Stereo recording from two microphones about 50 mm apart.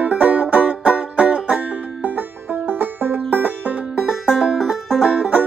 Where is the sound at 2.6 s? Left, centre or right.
Right.